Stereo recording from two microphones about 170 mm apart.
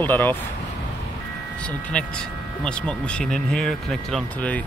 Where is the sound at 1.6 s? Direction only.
5° left (ahead or behind).